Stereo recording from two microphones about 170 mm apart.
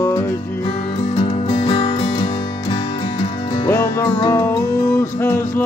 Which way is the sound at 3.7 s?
15° left (ahead or behind).